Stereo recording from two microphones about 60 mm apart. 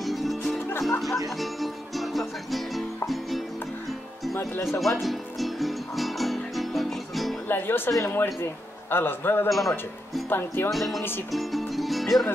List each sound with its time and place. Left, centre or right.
0.0 s music: centre
4.6 s music: centre
7.4 s a man's voice: left
9.5 s a man's voice: centre
10.3 s a man's voice: left
10.7 s a man's voice: centre